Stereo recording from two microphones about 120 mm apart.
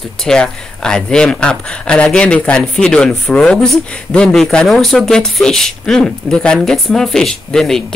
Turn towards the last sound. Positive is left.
turn(degrees=5)  # may be behind; listen again after turning